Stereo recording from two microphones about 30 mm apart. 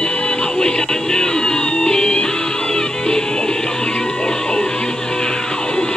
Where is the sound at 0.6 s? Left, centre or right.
Left.